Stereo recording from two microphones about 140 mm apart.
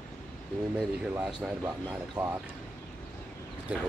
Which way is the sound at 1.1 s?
15° right (ahead or behind).